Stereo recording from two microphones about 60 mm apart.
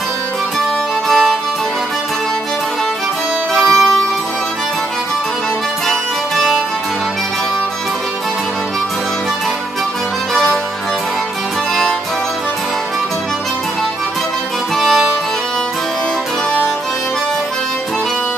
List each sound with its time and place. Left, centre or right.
1.0 s music: centre
3.6 s music: centre
5.9 s accordion: centre
10.3 s music: centre
14.8 s music: centre